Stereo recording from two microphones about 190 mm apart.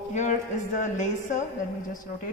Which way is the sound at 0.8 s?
40° left (ahead or behind).